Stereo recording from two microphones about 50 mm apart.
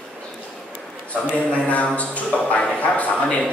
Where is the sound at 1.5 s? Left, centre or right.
Left.